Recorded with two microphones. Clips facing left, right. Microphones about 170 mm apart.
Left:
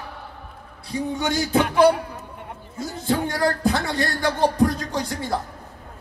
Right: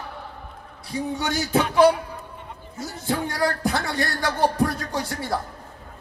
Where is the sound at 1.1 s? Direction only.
15° left (ahead or behind).